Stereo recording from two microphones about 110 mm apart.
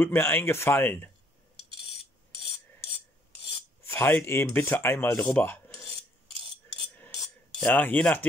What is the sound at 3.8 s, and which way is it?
Speech, 20° left (ahead or behind).